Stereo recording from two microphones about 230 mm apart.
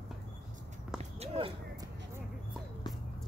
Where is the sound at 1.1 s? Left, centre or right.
Right.